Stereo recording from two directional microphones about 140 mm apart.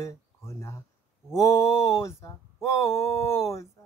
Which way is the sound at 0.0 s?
20° left (ahead or behind).